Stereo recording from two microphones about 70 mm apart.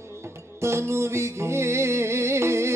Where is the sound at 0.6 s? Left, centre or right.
Right.